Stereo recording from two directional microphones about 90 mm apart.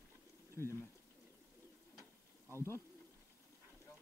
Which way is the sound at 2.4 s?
30° left (ahead or behind).